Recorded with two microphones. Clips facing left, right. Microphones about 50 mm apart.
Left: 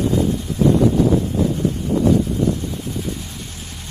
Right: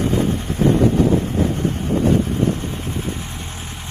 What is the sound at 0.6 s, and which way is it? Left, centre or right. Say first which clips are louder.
Vehicle: left 1 dB; right.